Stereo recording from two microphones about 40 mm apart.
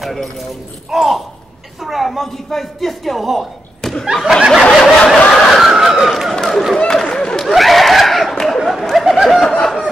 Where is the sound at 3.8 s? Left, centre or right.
Centre.